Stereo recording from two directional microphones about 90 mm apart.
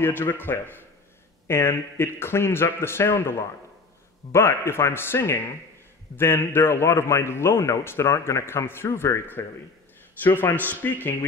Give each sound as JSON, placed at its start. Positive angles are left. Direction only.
{"t": 0.0, "sound": "a man's voice", "side_deg": 25}